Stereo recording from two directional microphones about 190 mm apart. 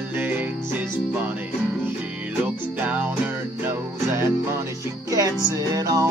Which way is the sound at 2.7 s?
10° right (ahead or behind).